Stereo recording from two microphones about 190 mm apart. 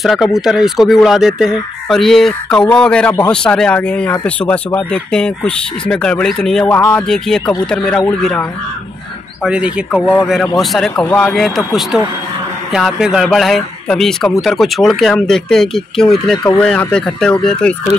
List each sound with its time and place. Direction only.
0.0 s speech: centre (ahead or behind)